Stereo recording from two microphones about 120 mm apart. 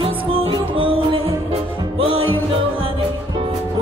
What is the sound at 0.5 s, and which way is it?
Music, 45° right (ahead or behind).